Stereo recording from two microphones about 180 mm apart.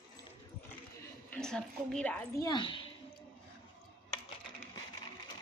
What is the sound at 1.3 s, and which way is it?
A woman's voice, 5° left (ahead or behind).